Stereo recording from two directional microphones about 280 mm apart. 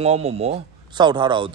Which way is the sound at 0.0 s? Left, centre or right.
Right.